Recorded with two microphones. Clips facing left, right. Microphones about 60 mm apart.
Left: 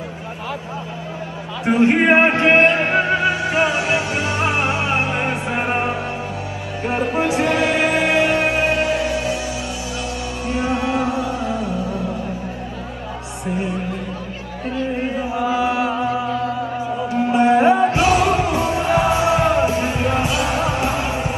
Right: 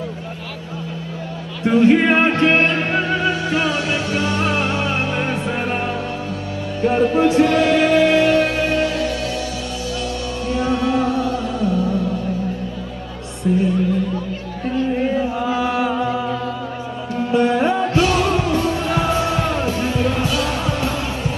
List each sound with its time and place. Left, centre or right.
1.6 s music: left
10.5 s music: left
13.4 s music: centre
15.0 s chant: centre
17.1 s music: left